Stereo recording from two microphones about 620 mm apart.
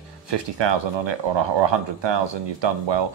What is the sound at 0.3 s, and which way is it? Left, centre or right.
Speech, right.